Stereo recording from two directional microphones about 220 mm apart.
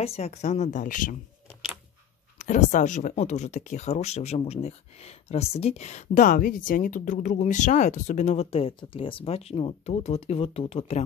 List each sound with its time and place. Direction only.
0.0 s speech: 30° left (ahead or behind)
2.3 s speech: 35° left (ahead or behind)